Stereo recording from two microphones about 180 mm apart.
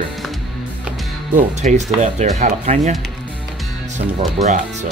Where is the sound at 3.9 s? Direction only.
40° right (ahead or behind).